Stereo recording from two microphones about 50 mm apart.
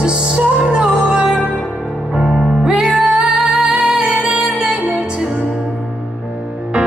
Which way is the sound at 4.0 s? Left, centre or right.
Right.